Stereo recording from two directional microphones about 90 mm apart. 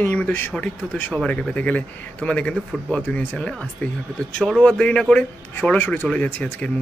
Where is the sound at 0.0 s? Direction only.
20° left (ahead or behind).